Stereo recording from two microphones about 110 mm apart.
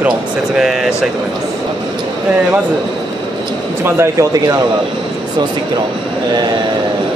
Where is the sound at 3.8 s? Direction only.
25° right (ahead or behind).